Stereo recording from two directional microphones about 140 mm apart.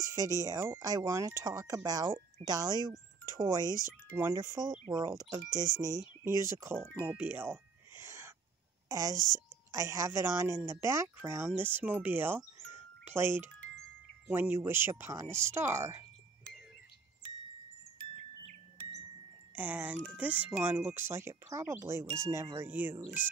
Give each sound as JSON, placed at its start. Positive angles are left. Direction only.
{"t": 0.0, "sound": "speech", "side_deg": -25}
{"t": 3.6, "sound": "speech", "side_deg": 25}
{"t": 4.2, "sound": "speech", "side_deg": -20}
{"t": 5.7, "sound": "speech", "side_deg": 20}
{"t": 6.5, "sound": "speech", "side_deg": -20}
{"t": 7.1, "sound": "a sound", "side_deg": -10}
{"t": 8.8, "sound": "a woman's voice", "side_deg": -25}
{"t": 19.5, "sound": "speech", "side_deg": -10}